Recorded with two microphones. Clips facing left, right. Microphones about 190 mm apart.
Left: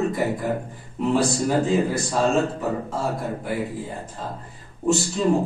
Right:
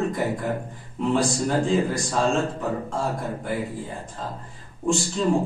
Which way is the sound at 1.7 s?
5° left (ahead or behind).